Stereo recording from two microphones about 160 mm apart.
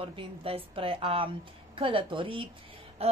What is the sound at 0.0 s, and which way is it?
A woman's voice, 35° right (ahead or behind).